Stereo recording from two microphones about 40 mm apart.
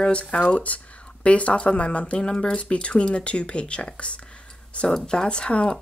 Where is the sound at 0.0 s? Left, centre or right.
Left.